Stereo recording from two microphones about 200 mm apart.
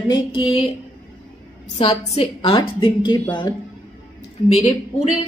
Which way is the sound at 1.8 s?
30° left (ahead or behind).